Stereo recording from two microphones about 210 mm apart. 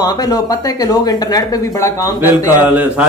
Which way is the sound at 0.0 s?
20° left (ahead or behind).